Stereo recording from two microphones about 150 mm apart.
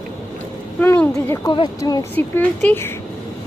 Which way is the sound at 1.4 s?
30° left (ahead or behind).